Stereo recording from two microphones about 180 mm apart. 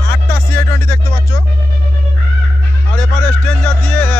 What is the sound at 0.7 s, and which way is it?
Music, 15° left (ahead or behind).